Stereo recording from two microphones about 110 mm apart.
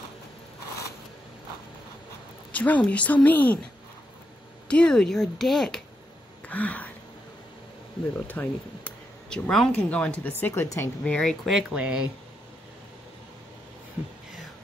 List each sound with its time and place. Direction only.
2.5 s a woman's voice: 15° left (ahead or behind)
4.6 s speech: 10° left (ahead or behind)
6.4 s a sound: 15° left (ahead or behind)
8.3 s speech: 15° left (ahead or behind)
10.4 s speech: 25° left (ahead or behind)
11.1 s speech: 5° left (ahead or behind)